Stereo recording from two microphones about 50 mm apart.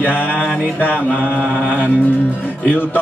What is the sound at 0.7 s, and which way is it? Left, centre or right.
Speech, left.